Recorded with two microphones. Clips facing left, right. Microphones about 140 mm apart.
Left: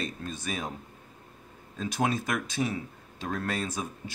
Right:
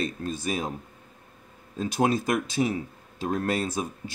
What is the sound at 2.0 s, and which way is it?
Speech, 20° right (ahead or behind).